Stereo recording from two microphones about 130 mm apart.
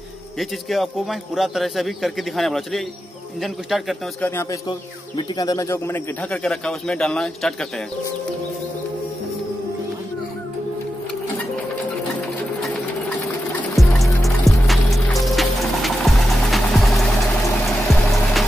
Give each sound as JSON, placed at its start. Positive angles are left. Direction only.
{"t": 0.4, "sound": "a man's voice", "side_deg": 0}
{"t": 4.2, "sound": "a man's voice", "side_deg": 20}
{"t": 4.6, "sound": "a man's voice", "side_deg": 35}
{"t": 13.7, "sound": "music", "side_deg": 0}